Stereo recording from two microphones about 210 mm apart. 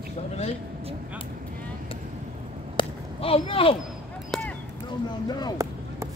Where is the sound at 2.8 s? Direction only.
25° left (ahead or behind).